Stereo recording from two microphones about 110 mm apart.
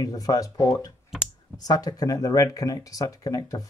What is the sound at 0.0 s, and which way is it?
Speech, 35° left (ahead or behind).